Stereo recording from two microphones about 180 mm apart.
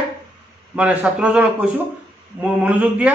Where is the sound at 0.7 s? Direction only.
5° right (ahead or behind).